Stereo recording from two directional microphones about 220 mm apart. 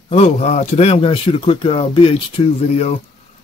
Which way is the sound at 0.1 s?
30° left (ahead or behind).